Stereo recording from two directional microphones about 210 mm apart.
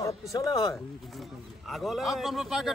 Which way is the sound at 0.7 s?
Centre (ahead or behind).